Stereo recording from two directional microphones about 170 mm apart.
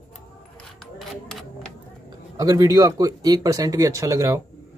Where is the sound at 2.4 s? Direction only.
20° right (ahead or behind).